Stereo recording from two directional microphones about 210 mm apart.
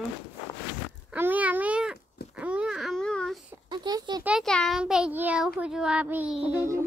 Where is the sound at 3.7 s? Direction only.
20° right (ahead or behind).